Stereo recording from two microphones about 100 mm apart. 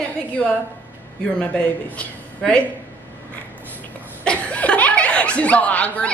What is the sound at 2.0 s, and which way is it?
Speech, 10° left (ahead or behind).